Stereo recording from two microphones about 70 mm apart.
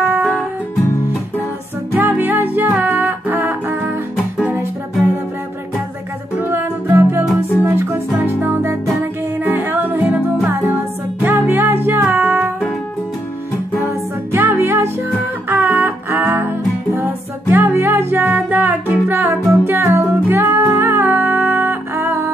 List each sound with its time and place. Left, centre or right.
2.0 s music: right
6.6 s music: right
11.1 s music: right
14.3 s music: right